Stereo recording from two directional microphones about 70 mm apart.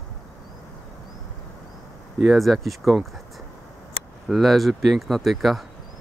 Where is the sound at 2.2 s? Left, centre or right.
Centre.